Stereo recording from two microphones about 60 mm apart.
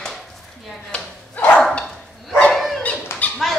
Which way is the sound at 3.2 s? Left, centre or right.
Left.